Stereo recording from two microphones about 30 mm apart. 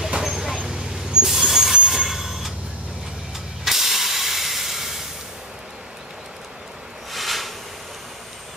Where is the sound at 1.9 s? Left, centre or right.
Centre.